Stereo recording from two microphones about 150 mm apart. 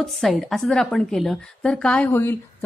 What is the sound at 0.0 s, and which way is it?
A woman's voice, centre (ahead or behind).